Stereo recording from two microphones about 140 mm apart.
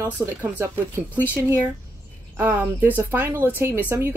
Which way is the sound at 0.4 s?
15° right (ahead or behind).